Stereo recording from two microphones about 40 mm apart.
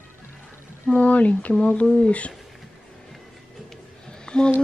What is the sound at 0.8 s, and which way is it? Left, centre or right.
Speech, left.